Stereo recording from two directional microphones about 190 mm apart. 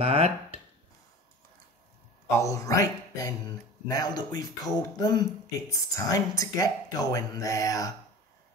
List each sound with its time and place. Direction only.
0.0 s speech: 30° right (ahead or behind)
2.3 s speech: 15° left (ahead or behind)